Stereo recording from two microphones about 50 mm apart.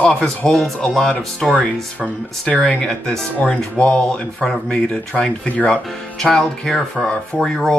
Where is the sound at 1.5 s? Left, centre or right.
Left.